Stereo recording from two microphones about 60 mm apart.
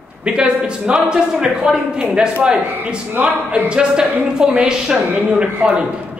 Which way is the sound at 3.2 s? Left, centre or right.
Right.